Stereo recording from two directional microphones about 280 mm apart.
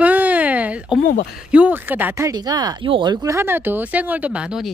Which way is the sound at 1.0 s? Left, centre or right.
Left.